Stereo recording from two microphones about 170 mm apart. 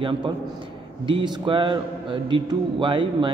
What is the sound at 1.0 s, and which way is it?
A man's voice, 30° right (ahead or behind).